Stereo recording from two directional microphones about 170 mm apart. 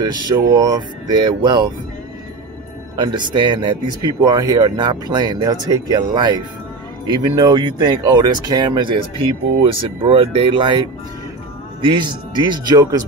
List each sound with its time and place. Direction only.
0.0 s speech: 25° right (ahead or behind)
3.0 s speech: 25° right (ahead or behind)